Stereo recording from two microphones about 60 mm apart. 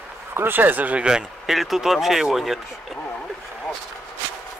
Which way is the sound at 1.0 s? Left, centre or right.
Centre.